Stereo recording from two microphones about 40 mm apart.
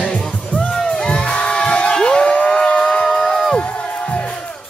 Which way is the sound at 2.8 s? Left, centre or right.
Centre.